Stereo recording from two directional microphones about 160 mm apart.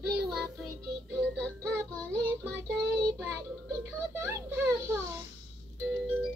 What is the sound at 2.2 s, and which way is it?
Child singing, 15° right (ahead or behind).